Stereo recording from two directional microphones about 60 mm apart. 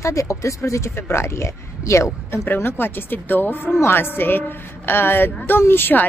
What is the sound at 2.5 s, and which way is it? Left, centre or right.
Speech, left.